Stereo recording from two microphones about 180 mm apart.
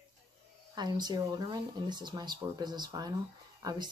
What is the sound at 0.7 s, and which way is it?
Speech, 25° right (ahead or behind).